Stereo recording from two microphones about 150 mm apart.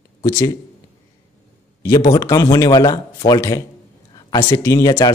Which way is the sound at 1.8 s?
20° left (ahead or behind).